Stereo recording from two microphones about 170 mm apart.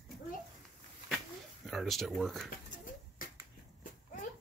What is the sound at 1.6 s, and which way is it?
Speech, centre (ahead or behind).